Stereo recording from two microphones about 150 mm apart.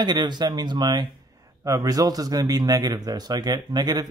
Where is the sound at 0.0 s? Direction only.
30° right (ahead or behind).